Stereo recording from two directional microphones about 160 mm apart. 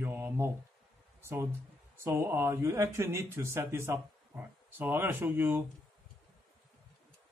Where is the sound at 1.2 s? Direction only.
15° right (ahead or behind).